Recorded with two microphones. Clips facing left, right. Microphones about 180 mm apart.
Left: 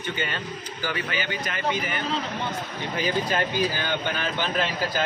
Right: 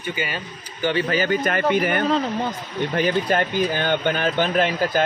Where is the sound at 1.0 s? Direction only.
40° right (ahead or behind).